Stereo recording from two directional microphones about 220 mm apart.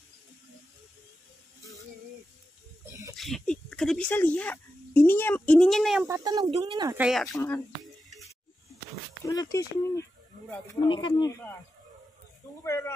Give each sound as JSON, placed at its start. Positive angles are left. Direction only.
{"t": 3.2, "sound": "speech", "side_deg": 0}
{"t": 6.0, "sound": "speech", "side_deg": -15}
{"t": 7.0, "sound": "speech", "side_deg": 0}
{"t": 7.2, "sound": "speech", "side_deg": 10}
{"t": 9.3, "sound": "speech", "side_deg": 15}
{"t": 12.6, "sound": "speech", "side_deg": 15}